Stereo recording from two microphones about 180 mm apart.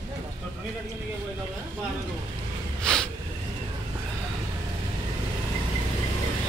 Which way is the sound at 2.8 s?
5° left (ahead or behind).